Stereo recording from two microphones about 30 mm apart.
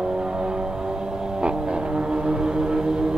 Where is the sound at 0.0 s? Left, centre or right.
Right.